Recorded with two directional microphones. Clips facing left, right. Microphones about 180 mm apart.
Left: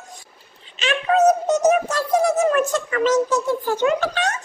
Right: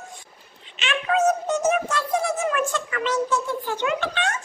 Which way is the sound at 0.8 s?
35° left (ahead or behind).